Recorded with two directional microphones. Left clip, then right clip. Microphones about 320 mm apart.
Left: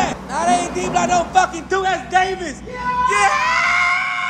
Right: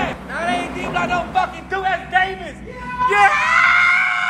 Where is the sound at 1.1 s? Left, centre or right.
Left.